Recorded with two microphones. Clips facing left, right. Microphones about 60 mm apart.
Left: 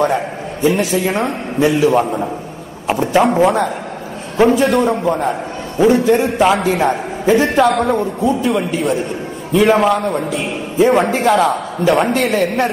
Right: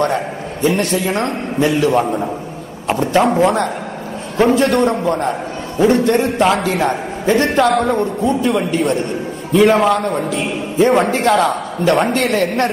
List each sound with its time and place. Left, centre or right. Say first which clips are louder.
0.0 s a sound: left 1 dB; centre
1.1 s a man's voice: even; centre
6.5 s a man's voice: left 2 dB; centre
6.9 s a man's voice: left 2 dB; centre